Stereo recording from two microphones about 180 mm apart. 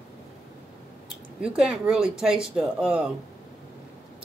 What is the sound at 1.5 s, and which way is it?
Speech, 5° right (ahead or behind).